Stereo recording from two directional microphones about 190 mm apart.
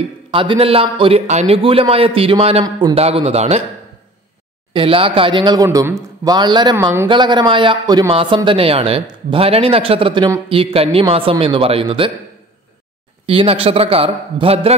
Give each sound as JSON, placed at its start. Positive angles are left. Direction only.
{"t": 0.3, "sound": "a man's voice", "side_deg": -25}
{"t": 4.7, "sound": "speech", "side_deg": -30}
{"t": 13.3, "sound": "a man's voice", "side_deg": -30}